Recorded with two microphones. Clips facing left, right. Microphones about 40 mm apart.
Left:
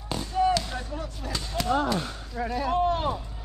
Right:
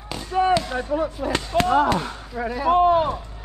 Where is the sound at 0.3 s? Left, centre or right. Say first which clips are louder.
Right 5 dB; right.